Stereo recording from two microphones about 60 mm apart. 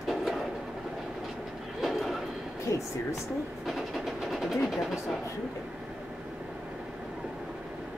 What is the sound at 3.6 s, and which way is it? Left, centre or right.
Train, centre.